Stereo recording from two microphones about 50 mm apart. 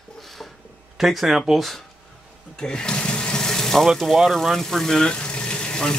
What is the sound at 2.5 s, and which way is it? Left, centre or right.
Sink, centre.